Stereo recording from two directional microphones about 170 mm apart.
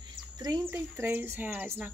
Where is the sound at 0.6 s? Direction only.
15° right (ahead or behind).